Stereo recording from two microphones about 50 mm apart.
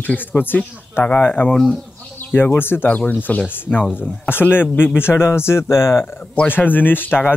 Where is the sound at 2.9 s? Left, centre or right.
Left.